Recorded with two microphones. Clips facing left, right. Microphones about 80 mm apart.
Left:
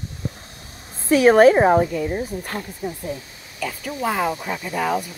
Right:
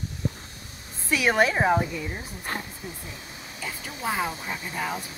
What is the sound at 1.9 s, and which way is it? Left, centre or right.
Speech, left.